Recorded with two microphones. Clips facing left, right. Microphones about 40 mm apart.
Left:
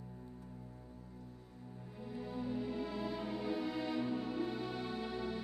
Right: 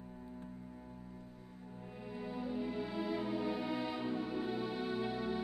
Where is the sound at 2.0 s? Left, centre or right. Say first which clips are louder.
Even; centre.